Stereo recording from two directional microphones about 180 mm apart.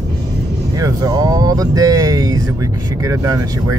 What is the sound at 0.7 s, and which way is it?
Speech, 20° right (ahead or behind).